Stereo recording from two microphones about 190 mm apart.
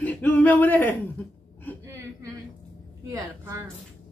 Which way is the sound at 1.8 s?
15° right (ahead or behind).